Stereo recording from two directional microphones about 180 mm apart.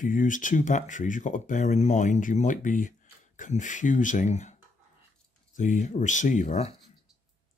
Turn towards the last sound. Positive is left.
turn(degrees=40)  # may be behind; listen again after turning